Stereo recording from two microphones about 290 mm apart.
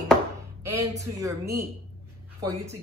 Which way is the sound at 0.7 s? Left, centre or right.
Centre.